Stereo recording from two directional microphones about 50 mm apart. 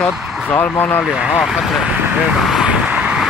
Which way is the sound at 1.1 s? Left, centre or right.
Right.